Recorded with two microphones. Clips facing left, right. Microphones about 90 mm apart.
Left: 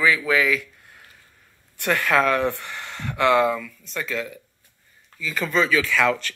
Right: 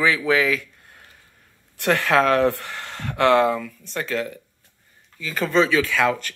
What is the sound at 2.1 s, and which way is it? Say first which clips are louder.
Speech: right 2 dB; 60° right (ahead or behind).